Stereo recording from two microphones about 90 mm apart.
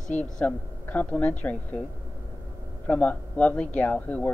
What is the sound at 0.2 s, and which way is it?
A woman's voice, 15° left (ahead or behind).